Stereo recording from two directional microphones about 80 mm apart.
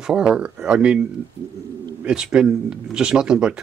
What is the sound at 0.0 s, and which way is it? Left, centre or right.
Speech, centre.